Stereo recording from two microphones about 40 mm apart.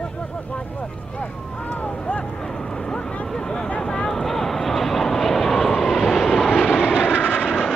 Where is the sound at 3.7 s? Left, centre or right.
Left.